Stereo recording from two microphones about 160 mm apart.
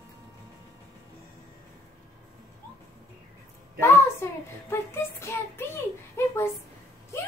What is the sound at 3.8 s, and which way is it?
Child singing, 15° left (ahead or behind).